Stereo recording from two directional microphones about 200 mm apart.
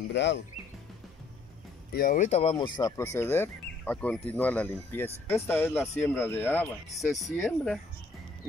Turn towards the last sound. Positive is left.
turn(degrees=5)  # may be behind; listen again after turning